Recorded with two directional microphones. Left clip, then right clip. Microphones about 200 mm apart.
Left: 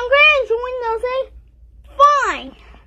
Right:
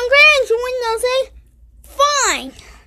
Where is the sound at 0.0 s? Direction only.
35° right (ahead or behind).